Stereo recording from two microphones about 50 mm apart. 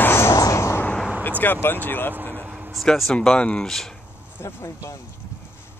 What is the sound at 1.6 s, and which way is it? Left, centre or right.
Speech, left.